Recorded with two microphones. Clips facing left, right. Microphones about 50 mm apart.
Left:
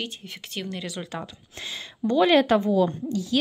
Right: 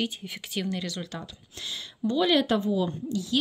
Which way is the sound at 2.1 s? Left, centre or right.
Left.